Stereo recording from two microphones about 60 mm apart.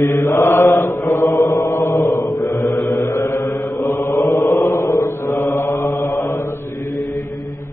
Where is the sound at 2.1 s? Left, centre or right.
Left.